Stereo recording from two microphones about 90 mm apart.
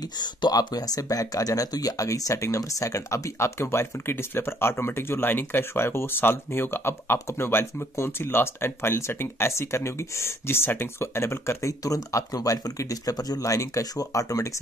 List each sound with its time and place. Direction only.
0.2 s speech: 50° left (ahead or behind)